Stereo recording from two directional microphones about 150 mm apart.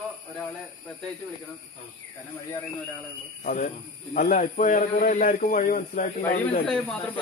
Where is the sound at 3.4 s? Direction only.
65° left (ahead or behind).